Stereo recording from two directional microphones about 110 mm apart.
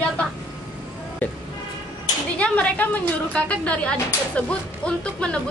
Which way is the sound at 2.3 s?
10° left (ahead or behind).